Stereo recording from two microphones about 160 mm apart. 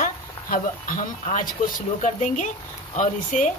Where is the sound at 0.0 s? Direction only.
60° left (ahead or behind).